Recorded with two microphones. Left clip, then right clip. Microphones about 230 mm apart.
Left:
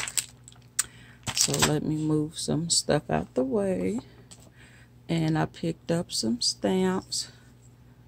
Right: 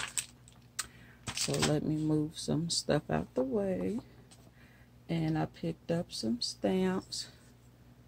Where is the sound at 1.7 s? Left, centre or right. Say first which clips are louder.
Left 5 dB; centre.